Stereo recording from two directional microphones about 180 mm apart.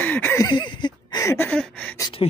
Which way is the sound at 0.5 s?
25° left (ahead or behind).